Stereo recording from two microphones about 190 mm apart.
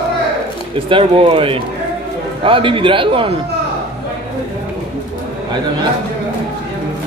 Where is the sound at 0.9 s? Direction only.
25° right (ahead or behind).